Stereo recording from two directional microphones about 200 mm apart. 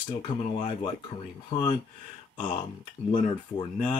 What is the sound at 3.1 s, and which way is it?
Speech, 25° left (ahead or behind).